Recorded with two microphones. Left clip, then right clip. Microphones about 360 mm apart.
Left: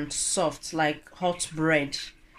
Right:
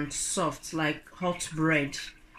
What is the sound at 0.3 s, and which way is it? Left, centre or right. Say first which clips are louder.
Speech: left 4 dB; centre.